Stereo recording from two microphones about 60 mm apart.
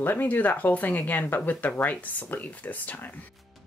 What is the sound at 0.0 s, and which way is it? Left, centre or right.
Speech, left.